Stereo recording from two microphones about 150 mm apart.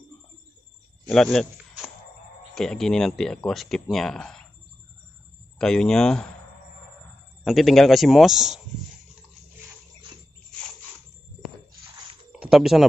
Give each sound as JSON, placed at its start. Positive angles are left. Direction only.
{"t": 1.0, "sound": "speech", "side_deg": 5}
{"t": 5.6, "sound": "speech", "side_deg": 5}
{"t": 7.4, "sound": "speech", "side_deg": 0}
{"t": 12.3, "sound": "a sound", "side_deg": -5}